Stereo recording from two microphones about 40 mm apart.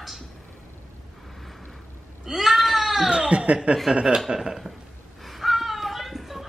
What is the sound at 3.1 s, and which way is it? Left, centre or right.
Speech, right.